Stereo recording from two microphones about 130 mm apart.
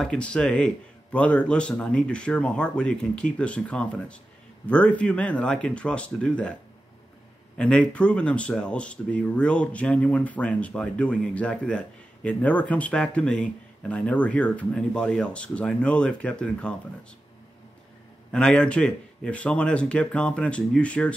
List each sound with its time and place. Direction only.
0.0 s speech: 10° left (ahead or behind)
7.5 s speech: 5° left (ahead or behind)
18.3 s speech: 5° left (ahead or behind)